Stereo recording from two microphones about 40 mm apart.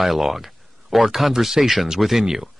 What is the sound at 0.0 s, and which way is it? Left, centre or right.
Speech, centre.